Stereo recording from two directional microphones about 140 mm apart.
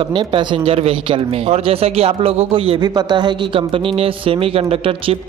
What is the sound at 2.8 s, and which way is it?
Speech, 30° right (ahead or behind).